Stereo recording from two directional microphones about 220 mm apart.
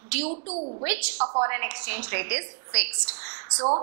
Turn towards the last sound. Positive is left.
turn(degrees=-30)  # may be behind; listen again after turning